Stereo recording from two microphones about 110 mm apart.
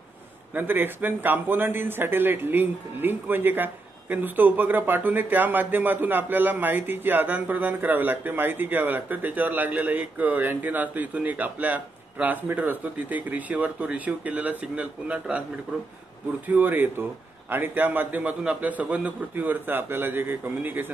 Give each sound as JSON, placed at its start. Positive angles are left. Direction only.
{"t": 0.6, "sound": "a man's voice", "side_deg": -20}
{"t": 16.4, "sound": "a man's voice", "side_deg": -15}